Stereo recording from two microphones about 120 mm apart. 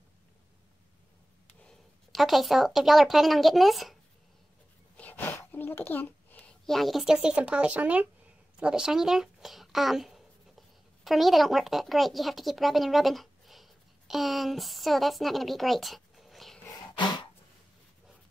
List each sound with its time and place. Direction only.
1.6 s speech: 5° left (ahead or behind)
4.9 s a child's voice: 15° left (ahead or behind)
16.7 s throat clearing: 40° left (ahead or behind)